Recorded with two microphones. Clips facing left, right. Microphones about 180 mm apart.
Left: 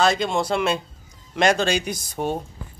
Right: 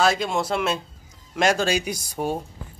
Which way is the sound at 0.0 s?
5° right (ahead or behind).